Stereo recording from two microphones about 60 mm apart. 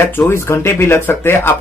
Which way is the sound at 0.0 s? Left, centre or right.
Left.